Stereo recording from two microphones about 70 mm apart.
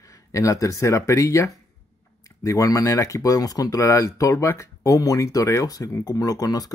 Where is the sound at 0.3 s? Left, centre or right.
Left.